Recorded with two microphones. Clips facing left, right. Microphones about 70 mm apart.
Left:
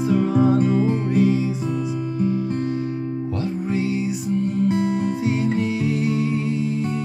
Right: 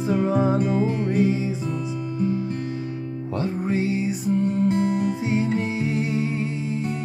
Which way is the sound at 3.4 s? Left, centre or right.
Right.